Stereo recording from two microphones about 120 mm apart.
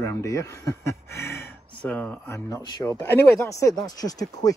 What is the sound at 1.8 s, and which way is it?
Speech, 10° left (ahead or behind).